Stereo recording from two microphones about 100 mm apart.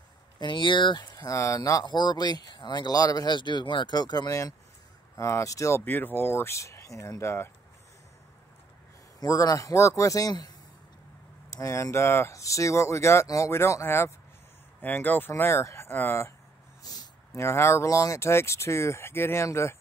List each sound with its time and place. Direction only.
0.4 s speech: 55° left (ahead or behind)
1.1 s speech: 35° left (ahead or behind)
5.8 s speech: 20° left (ahead or behind)
9.2 s speech: 35° left (ahead or behind)
11.5 s speech: 30° left (ahead or behind)
16.8 s a sound: 40° left (ahead or behind)
17.4 s speech: 25° left (ahead or behind)